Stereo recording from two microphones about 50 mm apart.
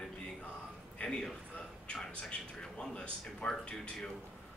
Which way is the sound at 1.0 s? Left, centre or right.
Left.